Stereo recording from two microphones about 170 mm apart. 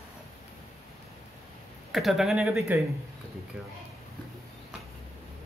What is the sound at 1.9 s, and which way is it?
Speech, centre (ahead or behind).